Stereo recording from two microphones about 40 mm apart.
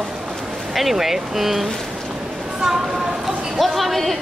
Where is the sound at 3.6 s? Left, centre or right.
Centre.